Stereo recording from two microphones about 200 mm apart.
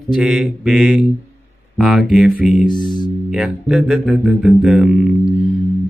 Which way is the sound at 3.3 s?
5° right (ahead or behind).